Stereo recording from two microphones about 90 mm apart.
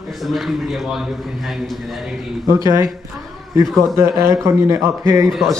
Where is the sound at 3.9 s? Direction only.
30° right (ahead or behind).